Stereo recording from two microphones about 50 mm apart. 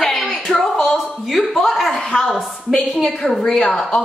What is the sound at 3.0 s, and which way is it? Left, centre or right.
Speech, centre.